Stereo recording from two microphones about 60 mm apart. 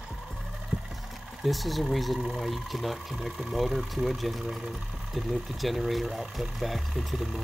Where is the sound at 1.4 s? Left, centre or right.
Centre.